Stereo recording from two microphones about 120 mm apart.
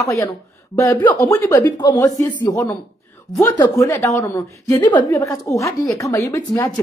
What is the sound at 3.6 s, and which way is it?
A woman's voice, 25° left (ahead or behind).